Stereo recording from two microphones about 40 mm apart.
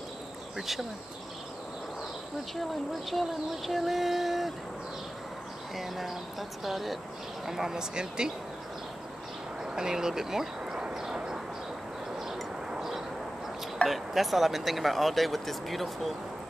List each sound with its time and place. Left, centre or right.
0.6 s speech: centre
2.5 s speech: centre
5.8 s speech: centre
9.6 s speech: centre
10.8 s vehicle: centre
13.8 s speech: centre